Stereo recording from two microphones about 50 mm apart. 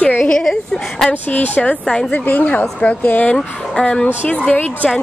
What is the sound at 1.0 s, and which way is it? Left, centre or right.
Speech, left.